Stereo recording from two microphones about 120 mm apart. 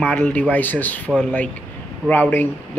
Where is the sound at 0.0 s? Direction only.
15° left (ahead or behind).